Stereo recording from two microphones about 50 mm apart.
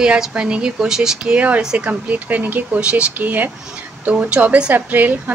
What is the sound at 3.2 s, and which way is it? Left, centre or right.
A woman's voice, right.